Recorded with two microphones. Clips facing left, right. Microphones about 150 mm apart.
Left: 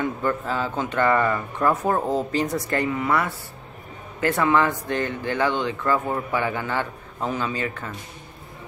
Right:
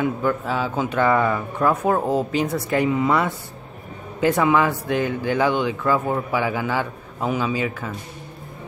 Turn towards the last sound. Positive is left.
turn(degrees=-5)  # may be behind; listen again after turning